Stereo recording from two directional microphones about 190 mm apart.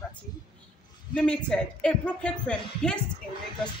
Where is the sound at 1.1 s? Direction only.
5° left (ahead or behind).